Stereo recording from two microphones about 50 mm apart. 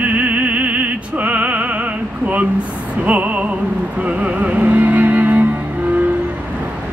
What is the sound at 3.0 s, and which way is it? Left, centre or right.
Music, right.